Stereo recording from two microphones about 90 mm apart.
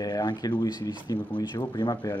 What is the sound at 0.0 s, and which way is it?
Speech, 50° left (ahead or behind).